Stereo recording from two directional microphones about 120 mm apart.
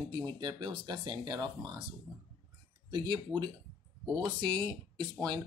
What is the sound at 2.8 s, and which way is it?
Speech, 40° right (ahead or behind).